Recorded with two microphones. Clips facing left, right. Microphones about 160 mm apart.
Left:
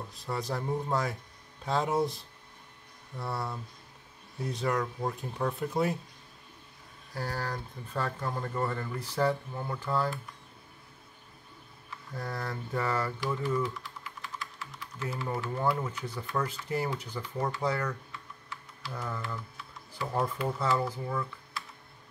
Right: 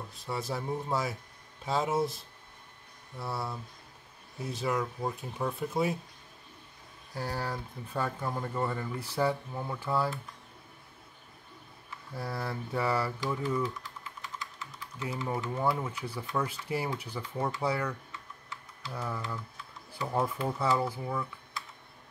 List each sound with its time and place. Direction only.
0.1 s speech: centre (ahead or behind)
7.2 s speech: 15° right (ahead or behind)
12.1 s speech: 5° right (ahead or behind)
14.2 s typing: 20° right (ahead or behind)
15.8 s speech: 10° right (ahead or behind)
18.9 s speech: 10° right (ahead or behind)